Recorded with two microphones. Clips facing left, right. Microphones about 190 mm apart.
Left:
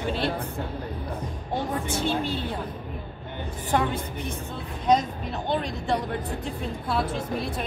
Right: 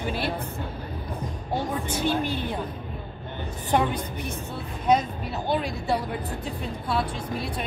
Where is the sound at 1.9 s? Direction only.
15° right (ahead or behind).